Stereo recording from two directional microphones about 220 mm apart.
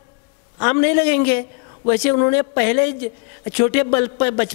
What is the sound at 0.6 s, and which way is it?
A woman's voice, 10° left (ahead or behind).